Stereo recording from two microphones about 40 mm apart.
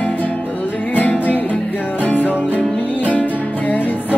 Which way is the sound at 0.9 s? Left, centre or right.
Left.